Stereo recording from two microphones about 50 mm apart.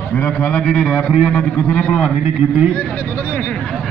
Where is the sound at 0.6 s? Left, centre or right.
Centre.